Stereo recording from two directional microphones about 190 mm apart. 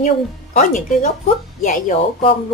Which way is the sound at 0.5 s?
45° left (ahead or behind).